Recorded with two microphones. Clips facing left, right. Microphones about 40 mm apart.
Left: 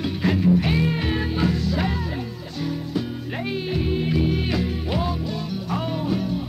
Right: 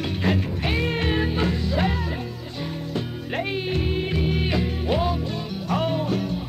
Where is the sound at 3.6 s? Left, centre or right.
Centre.